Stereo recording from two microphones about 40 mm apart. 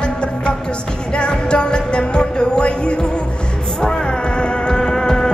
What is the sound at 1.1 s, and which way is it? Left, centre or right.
Music, left.